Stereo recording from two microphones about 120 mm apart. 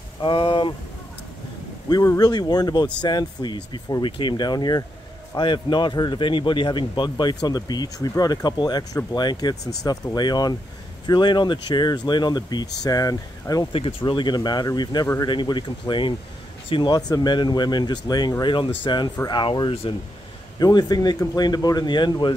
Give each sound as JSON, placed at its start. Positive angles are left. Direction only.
{"t": 0.2, "sound": "speech", "side_deg": 45}
{"t": 1.9, "sound": "speech", "side_deg": 30}
{"t": 13.7, "sound": "speech", "side_deg": 50}
{"t": 19.7, "sound": "speech", "side_deg": 55}
{"t": 20.5, "sound": "speech", "side_deg": 35}